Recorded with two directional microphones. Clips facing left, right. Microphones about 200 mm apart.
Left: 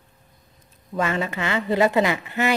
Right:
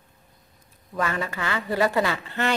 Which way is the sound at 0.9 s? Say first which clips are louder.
Left 3 dB; 25° left (ahead or behind).